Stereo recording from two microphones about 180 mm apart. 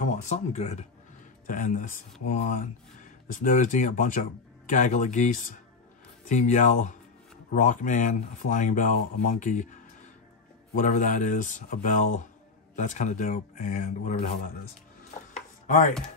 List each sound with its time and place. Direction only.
0.0 s speech: 40° left (ahead or behind)
15.3 s chopping: 45° left (ahead or behind)